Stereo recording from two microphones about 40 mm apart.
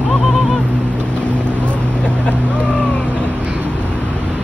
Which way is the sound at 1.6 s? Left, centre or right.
Left.